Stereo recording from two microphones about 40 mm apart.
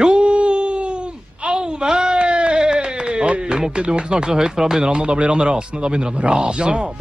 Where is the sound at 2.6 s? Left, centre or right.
Centre.